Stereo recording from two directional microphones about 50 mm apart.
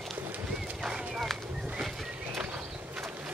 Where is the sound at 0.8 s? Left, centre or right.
Centre.